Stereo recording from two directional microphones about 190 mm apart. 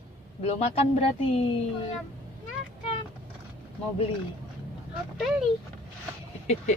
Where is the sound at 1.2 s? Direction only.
30° left (ahead or behind).